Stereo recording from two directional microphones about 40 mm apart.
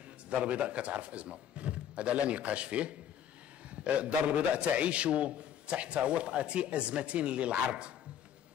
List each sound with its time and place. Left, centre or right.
0.3 s a man's voice: right
3.7 s a sound: right
4.6 s a man's voice: right